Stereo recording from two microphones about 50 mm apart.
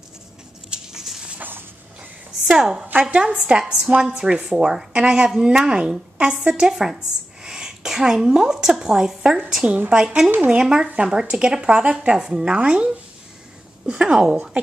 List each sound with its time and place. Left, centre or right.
2.4 s a woman's voice: centre
2.9 s speech: right
6.7 s a woman's voice: centre
10.3 s speech: right
10.6 s speech: centre